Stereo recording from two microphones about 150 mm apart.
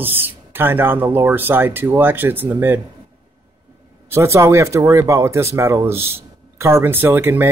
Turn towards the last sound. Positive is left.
turn(degrees=-15)  # may be behind; listen again after turning